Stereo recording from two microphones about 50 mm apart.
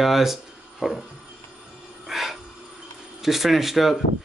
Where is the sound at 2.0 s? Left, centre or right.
Centre.